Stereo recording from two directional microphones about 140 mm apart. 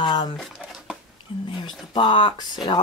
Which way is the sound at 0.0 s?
30° left (ahead or behind).